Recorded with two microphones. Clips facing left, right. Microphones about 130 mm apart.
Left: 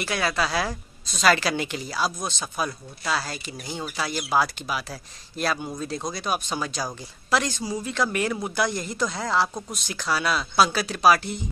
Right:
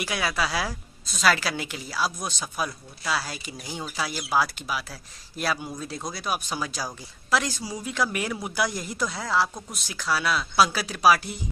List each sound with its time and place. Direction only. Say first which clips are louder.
0.0 s speech: left 2 dB; 10° right (ahead or behind)